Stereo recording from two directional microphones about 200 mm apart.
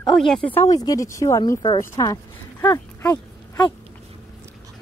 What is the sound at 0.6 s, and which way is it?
Speech, 15° left (ahead or behind).